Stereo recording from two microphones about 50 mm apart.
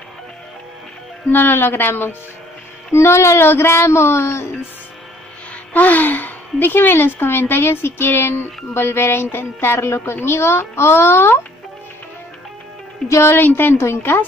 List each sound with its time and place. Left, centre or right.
1.3 s speech: left
2.9 s a child's voice: left
3.4 s a child's voice: left
5.7 s a child's voice: left
13.3 s speech: left
13.7 s a child's voice: left